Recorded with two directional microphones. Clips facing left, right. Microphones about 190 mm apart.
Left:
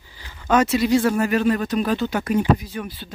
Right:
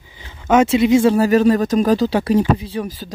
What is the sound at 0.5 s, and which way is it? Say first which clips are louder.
Speech: right 5 dB; 25° right (ahead or behind).